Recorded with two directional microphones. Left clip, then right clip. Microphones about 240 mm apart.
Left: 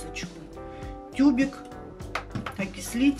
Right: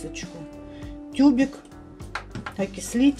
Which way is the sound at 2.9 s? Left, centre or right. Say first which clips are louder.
Right 3 dB; right.